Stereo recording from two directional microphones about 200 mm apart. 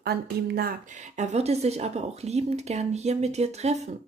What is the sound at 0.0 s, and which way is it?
Speech, 50° right (ahead or behind).